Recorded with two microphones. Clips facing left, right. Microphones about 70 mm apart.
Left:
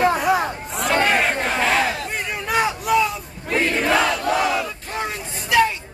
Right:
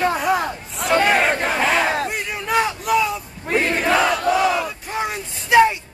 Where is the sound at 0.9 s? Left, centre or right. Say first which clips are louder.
Right 2 dB; right.